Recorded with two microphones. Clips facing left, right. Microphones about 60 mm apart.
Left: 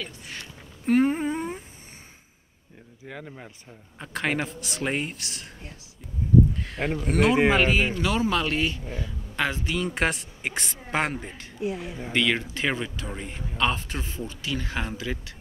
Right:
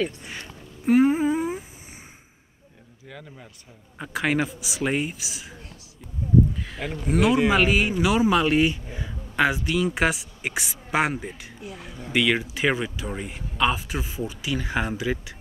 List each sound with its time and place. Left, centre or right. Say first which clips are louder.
0.8 s a sound: right 3 dB; centre
3.1 s speech: left 3 dB; centre
4.0 s speech: right 3 dB; centre
6.5 s speech: left 3 dB; centre
11.6 s speech: left 9 dB; left
12.1 s speech: right 2 dB; centre